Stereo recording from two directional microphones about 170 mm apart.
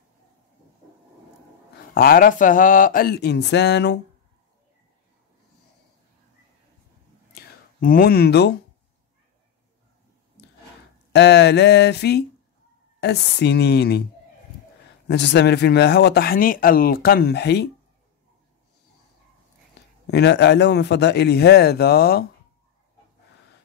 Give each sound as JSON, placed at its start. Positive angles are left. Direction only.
{"t": 2.0, "sound": "speech", "side_deg": 55}
{"t": 7.8, "sound": "speech", "side_deg": 60}
{"t": 11.1, "sound": "speech", "side_deg": 85}
{"t": 15.0, "sound": "speech", "side_deg": 80}
{"t": 19.7, "sound": "speech", "side_deg": 85}